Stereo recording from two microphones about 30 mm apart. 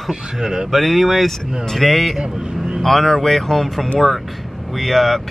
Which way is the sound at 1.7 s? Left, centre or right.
Centre.